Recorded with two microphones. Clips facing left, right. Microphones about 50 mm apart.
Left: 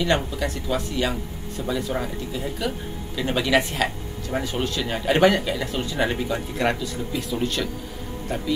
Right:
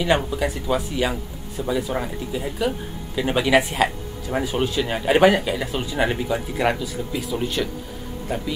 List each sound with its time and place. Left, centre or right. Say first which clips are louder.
0.0 s speech: right 2 dB; centre